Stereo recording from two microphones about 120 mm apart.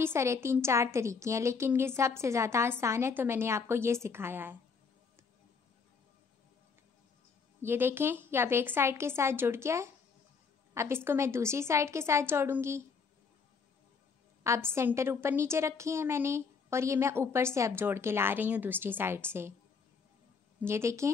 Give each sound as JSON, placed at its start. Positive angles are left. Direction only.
{"t": 0.0, "sound": "a woman's voice", "side_deg": -25}
{"t": 7.6, "sound": "a woman's voice", "side_deg": -20}
{"t": 14.4, "sound": "a woman's voice", "side_deg": -20}
{"t": 20.6, "sound": "a woman's voice", "side_deg": -25}